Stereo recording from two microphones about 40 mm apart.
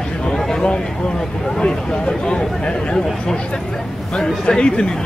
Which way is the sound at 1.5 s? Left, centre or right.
Left.